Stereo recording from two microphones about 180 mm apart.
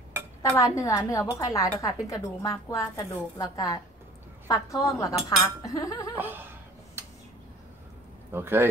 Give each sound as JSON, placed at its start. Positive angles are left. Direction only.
{"t": 0.4, "sound": "a woman's voice", "side_deg": 20}
{"t": 6.1, "sound": "chuckle", "side_deg": -10}
{"t": 8.3, "sound": "a man's voice", "side_deg": -10}